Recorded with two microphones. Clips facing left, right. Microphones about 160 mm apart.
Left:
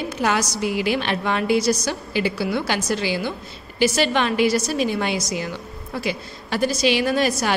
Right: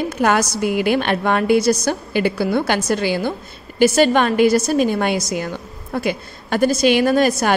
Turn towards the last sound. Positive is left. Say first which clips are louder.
# right 5 dB
turn(degrees=-50)  # may be behind; listen again after turning